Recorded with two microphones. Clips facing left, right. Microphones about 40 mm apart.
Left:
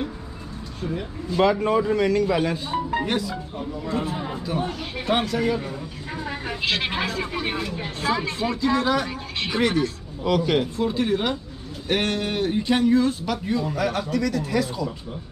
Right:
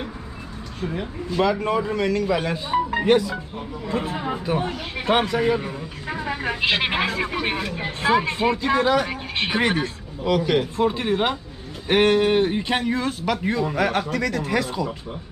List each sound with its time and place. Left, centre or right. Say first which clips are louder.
1.6 s a man's voice: left 2 dB; centre
2.7 s speech: right 3 dB; centre
3.9 s speech: right 3 dB; right
10.2 s a man's voice: right 1 dB; centre
10.8 s speech: right 2 dB; right